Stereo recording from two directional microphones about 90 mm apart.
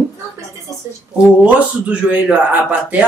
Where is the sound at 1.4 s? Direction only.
15° right (ahead or behind).